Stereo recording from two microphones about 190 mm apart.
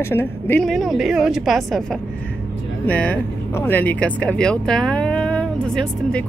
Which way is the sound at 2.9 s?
10° left (ahead or behind).